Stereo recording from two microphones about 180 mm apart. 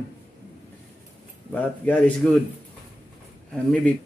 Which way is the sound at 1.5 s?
10° left (ahead or behind).